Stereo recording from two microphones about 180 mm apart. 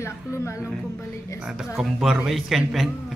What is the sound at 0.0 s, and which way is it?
A woman's voice, 15° left (ahead or behind).